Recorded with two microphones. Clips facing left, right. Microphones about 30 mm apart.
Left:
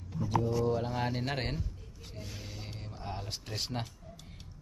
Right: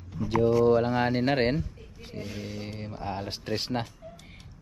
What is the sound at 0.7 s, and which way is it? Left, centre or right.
Speech, right.